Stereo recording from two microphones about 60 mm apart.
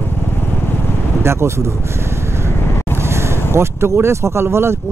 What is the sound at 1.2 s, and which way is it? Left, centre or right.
Speech, right.